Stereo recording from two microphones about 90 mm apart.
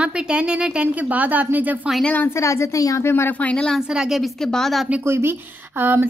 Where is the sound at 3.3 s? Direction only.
10° left (ahead or behind).